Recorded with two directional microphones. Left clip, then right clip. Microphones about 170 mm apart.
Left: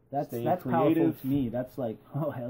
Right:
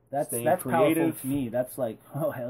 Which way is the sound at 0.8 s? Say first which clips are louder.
Right 1 dB; 15° right (ahead or behind).